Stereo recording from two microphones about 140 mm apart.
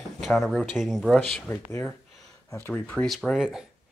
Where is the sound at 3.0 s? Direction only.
Centre (ahead or behind).